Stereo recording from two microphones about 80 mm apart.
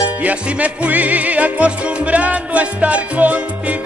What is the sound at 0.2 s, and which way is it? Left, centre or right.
Music, centre.